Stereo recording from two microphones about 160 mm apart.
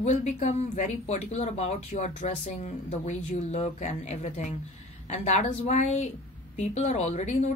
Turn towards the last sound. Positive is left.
turn(degrees=45)  # may be behind; listen again after turning